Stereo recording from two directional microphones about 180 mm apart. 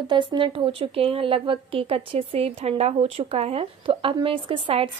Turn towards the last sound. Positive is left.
turn(degrees=-30)  # may be behind; listen again after turning